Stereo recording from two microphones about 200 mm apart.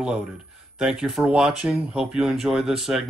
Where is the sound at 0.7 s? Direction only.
Centre (ahead or behind).